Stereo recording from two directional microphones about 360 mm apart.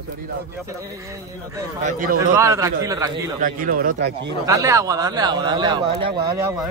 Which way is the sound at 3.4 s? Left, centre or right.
Right.